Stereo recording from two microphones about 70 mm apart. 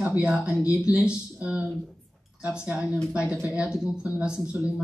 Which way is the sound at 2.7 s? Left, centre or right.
Centre.